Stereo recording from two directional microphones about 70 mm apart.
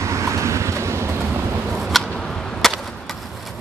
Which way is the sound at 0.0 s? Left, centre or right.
Right.